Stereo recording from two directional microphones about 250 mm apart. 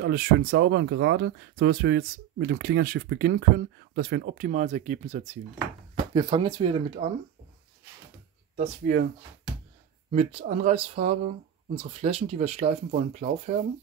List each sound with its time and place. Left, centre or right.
0.0 s speech: right
8.5 s speech: right
10.1 s speech: right